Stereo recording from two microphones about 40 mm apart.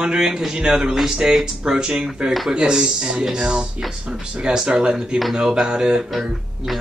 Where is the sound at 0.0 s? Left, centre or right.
Centre.